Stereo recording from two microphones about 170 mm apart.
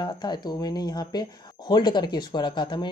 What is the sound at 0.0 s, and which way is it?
Speech, 25° left (ahead or behind).